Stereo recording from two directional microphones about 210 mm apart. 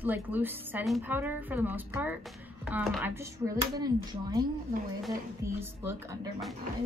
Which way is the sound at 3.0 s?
10° right (ahead or behind).